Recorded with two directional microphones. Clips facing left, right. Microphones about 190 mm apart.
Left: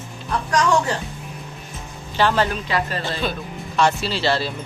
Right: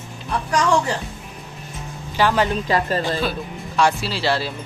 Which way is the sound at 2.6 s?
40° right (ahead or behind).